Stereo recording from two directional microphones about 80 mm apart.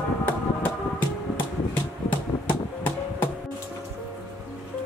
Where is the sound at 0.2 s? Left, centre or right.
Left.